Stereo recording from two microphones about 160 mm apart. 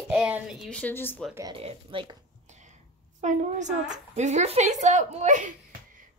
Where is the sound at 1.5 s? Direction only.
35° right (ahead or behind).